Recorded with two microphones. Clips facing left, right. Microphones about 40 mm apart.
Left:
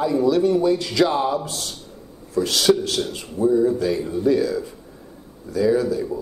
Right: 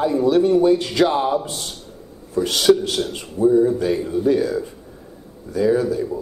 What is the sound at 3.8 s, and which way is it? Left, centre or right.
Speech, right.